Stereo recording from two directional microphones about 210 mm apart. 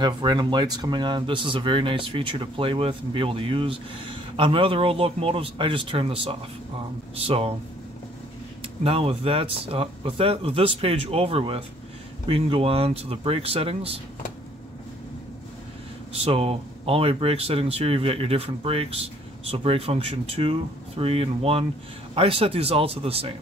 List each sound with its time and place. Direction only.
0.0 s speech: 20° right (ahead or behind)
8.8 s speech: 25° right (ahead or behind)
16.1 s speech: 30° right (ahead or behind)